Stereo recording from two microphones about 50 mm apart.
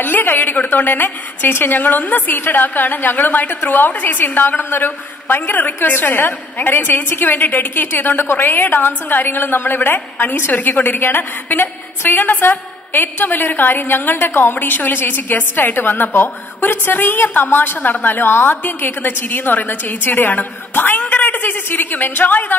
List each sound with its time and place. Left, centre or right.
0.0 s a woman's voice: left